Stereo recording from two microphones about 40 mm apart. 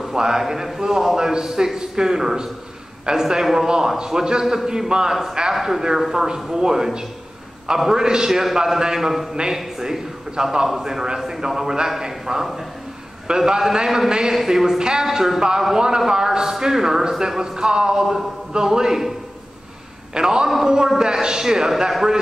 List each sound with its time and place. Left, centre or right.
0.1 s a man's voice: centre
14.8 s speech: centre
15.0 s a man's voice: centre
15.7 s a man's voice: centre
20.2 s a man's voice: centre